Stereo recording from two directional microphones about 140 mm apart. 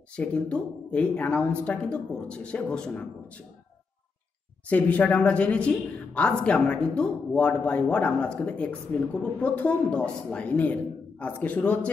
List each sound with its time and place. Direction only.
0.1 s speech: 10° left (ahead or behind)
4.6 s speech: 10° left (ahead or behind)